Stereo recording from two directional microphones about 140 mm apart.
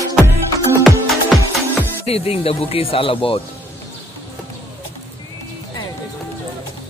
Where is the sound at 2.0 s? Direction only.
45° left (ahead or behind).